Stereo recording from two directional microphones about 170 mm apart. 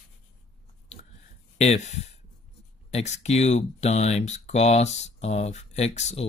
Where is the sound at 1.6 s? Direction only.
40° left (ahead or behind).